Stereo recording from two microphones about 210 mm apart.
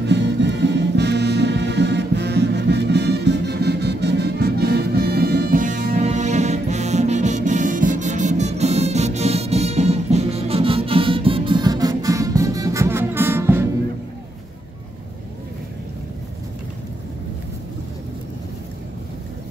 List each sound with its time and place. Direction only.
0.0 s music: 55° right (ahead or behind); by 13.7 s 10° right (ahead or behind)